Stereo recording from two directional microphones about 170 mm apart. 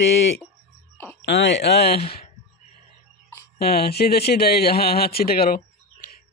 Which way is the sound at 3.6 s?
65° left (ahead or behind).